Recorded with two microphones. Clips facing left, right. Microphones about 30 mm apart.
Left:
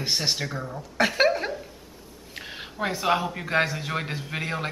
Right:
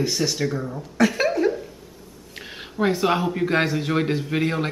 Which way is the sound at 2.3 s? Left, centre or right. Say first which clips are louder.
Right 4 dB; centre.